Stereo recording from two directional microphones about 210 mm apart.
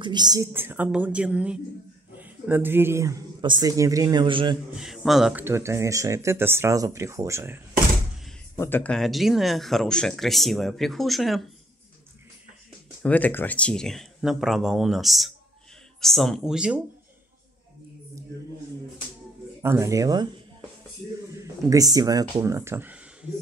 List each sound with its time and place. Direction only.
0.0 s speech: 20° right (ahead or behind)
4.7 s speech: centre (ahead or behind)
8.5 s speech: 10° left (ahead or behind)
13.0 s speech: 5° left (ahead or behind)
19.6 s speech: 15° right (ahead or behind)
21.3 s speech: 15° right (ahead or behind)